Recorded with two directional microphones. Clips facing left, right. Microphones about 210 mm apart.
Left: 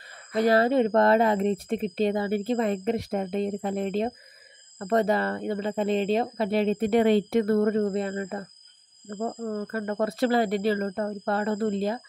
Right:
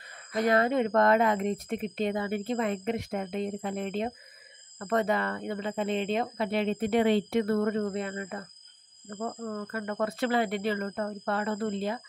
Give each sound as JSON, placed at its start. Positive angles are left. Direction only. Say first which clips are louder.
{"t": 0.3, "sound": "speech", "louder": "left 4 dB", "side_deg": 30}